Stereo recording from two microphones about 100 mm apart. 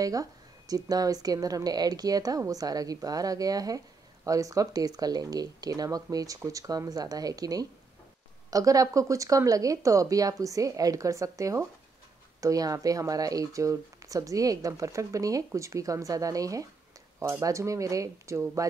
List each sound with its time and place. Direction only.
0.0 s speech: 35° right (ahead or behind)